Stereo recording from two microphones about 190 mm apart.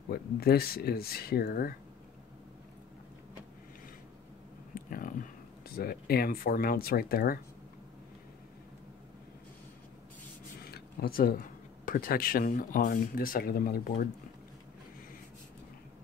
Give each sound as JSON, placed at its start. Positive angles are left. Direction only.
{"t": 0.1, "sound": "speech", "side_deg": 55}
{"t": 4.7, "sound": "a sound", "side_deg": 50}
{"t": 10.7, "sound": "speech", "side_deg": 50}